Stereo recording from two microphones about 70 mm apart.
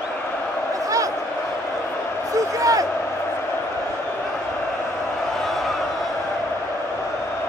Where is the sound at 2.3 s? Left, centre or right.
Right.